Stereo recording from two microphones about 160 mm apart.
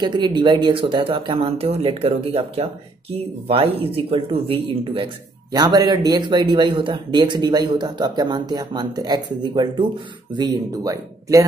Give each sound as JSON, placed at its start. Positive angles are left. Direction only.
{"t": 0.0, "sound": "speech", "side_deg": -30}